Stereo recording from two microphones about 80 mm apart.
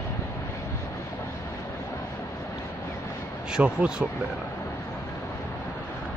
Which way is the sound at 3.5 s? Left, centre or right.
Centre.